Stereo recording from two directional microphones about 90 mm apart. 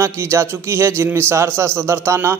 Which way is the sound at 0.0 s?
30° right (ahead or behind).